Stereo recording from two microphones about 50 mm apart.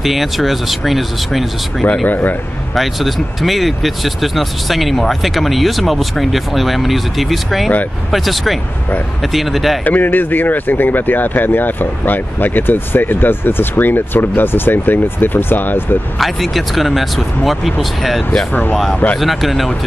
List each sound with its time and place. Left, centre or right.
0.0 s speech: centre
2.0 s speech: left
2.7 s speech: centre
9.8 s speech: left
16.2 s speech: centre
18.5 s speech: left
19.1 s speech: centre